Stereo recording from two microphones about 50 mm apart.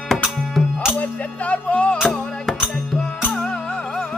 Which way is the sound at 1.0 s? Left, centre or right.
Left.